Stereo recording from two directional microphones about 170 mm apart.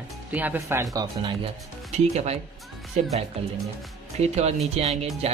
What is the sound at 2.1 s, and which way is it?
Speech, 40° right (ahead or behind).